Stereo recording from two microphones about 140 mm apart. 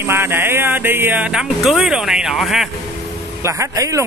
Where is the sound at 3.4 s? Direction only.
20° right (ahead or behind).